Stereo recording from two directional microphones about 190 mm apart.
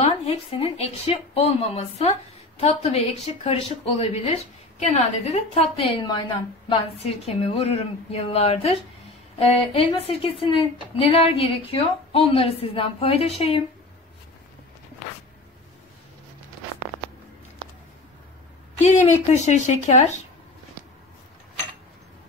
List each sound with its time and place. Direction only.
0.0 s a woman's voice: 30° left (ahead or behind)
18.8 s a woman's voice: 35° left (ahead or behind)